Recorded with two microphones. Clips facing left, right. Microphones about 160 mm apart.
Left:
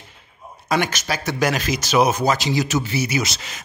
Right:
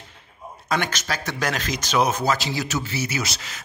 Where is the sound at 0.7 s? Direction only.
10° left (ahead or behind).